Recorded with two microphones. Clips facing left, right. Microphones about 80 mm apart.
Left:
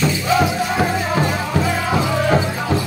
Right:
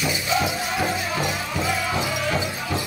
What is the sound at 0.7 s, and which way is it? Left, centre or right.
Music, left.